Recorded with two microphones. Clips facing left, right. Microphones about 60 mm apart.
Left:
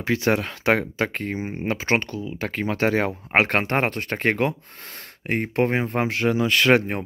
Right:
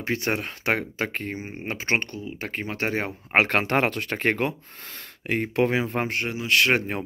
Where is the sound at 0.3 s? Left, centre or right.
Left.